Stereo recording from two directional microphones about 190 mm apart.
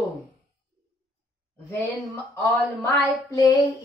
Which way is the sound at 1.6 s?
10° left (ahead or behind).